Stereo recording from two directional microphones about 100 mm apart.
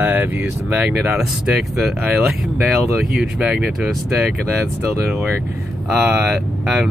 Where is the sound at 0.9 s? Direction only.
5° right (ahead or behind).